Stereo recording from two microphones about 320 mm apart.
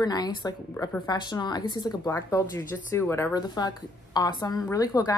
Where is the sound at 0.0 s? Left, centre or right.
Centre.